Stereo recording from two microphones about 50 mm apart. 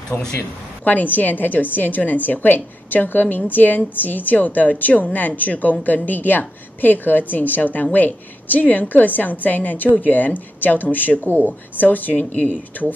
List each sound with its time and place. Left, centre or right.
0.1 s a woman's voice: left